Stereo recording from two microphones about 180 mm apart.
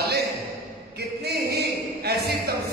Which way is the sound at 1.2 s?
60° right (ahead or behind).